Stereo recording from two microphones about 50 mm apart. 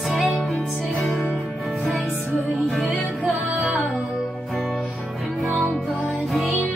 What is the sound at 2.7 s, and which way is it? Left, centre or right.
Music, centre.